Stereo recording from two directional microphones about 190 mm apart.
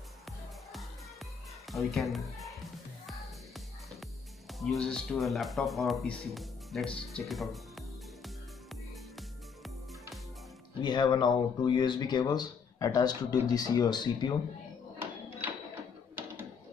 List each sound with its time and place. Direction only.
1.7 s speech: centre (ahead or behind)
4.5 s speech: centre (ahead or behind)
10.8 s speech: 25° left (ahead or behind)